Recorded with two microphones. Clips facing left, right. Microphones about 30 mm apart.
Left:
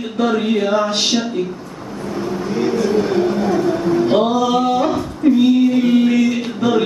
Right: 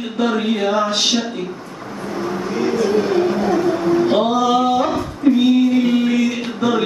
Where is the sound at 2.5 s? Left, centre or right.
Centre.